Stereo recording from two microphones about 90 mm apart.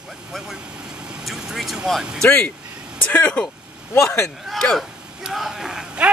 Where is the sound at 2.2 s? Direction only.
10° left (ahead or behind).